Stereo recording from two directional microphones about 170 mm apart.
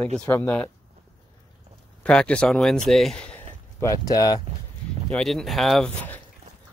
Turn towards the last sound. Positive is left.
turn(degrees=0)  # may be behind; listen again after turning